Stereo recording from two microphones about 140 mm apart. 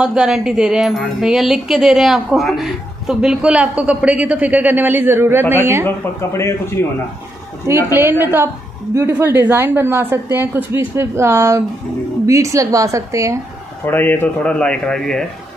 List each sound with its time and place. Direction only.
0.0 s speech: 5° right (ahead or behind)
5.9 s speech: 20° left (ahead or behind)
7.6 s a woman's voice: 15° right (ahead or behind)
13.8 s speech: 15° left (ahead or behind)